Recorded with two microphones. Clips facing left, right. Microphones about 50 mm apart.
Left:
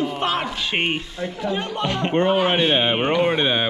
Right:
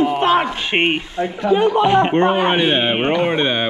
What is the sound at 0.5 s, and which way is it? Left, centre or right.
Speech, right.